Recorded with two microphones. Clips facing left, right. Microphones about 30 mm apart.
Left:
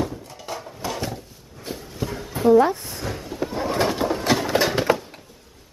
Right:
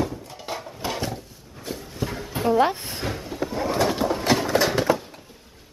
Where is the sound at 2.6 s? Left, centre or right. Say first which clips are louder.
Even; right.